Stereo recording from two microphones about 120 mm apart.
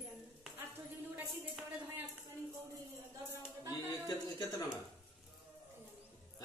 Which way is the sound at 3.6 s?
20° right (ahead or behind).